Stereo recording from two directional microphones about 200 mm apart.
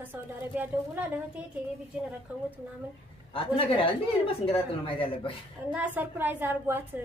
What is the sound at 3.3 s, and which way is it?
Speech, 25° left (ahead or behind).